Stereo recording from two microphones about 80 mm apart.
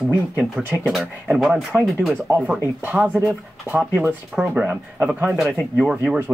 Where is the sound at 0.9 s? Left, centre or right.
Centre.